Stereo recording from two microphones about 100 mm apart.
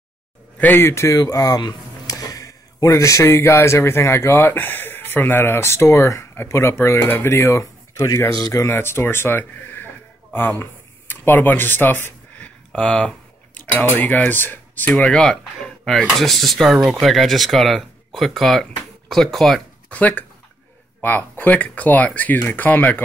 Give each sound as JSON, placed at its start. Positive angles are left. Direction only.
{"t": 0.6, "sound": "speech", "side_deg": 20}
{"t": 8.6, "sound": "speech", "side_deg": 25}
{"t": 10.6, "sound": "a sound", "side_deg": 20}
{"t": 13.7, "sound": "speech", "side_deg": 15}
{"t": 19.9, "sound": "speech", "side_deg": 15}